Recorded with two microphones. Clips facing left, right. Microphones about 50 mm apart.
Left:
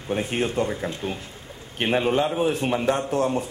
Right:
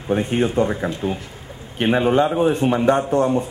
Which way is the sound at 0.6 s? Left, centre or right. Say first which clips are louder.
Right 5 dB; centre.